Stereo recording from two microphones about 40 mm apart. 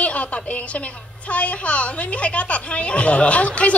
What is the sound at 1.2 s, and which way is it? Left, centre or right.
A woman's voice, left.